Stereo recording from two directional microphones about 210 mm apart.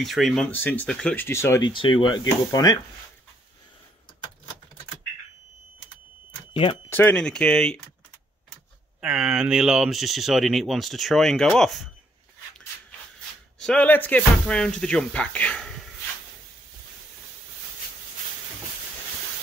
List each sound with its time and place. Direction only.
0.0 s speech: centre (ahead or behind)
1.7 s speech: 25° left (ahead or behind)
6.5 s speech: 25° left (ahead or behind)
6.9 s speech: 10° left (ahead or behind)
9.0 s speech: 5° right (ahead or behind)
13.6 s speech: 5° left (ahead or behind)